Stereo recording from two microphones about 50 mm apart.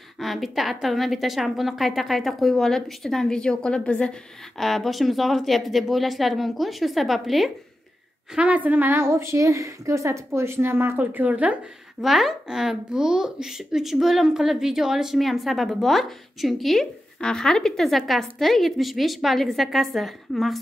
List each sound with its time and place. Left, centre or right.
0.2 s a woman's voice: centre; by 4.2 s left
4.6 s a child's voice: centre
8.4 s a woman's voice: right
8.9 s speech: right
11.0 s a woman's voice: right
12.0 s a child's voice: centre
17.2 s speech: centre
17.8 s a child's voice: centre